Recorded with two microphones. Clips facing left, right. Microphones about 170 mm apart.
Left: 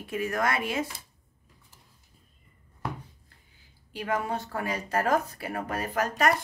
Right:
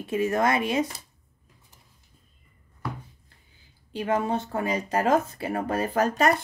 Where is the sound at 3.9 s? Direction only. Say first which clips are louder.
Right 4 dB; 25° right (ahead or behind).